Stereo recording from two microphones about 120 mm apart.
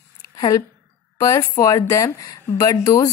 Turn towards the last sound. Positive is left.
turn(degrees=30)  # may be behind; listen again after turning